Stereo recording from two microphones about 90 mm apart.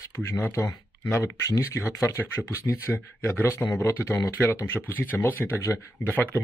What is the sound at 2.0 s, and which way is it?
Speech, 25° left (ahead or behind).